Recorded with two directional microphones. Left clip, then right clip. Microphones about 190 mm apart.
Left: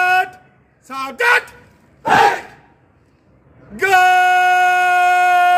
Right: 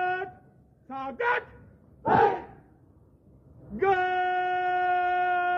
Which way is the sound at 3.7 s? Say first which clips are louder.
Left 13 dB; 5° right (ahead or behind).